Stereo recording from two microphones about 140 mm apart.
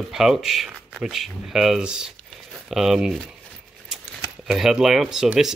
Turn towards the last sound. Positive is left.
turn(degrees=-5)  # may be behind; listen again after turning